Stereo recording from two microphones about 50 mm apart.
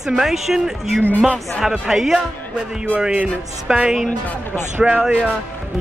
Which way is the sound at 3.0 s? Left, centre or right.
Centre.